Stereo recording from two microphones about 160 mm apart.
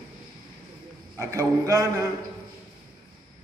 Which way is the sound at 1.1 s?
20° right (ahead or behind).